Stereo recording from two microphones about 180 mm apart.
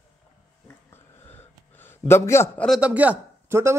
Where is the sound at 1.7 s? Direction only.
15° left (ahead or behind).